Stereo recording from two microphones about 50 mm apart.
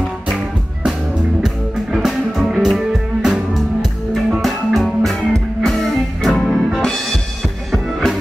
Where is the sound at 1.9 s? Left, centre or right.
Centre.